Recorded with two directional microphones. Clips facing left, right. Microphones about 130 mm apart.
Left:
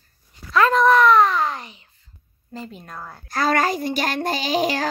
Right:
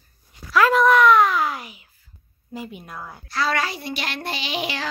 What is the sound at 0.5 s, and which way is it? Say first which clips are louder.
A child's voice: even; 5° right (ahead or behind).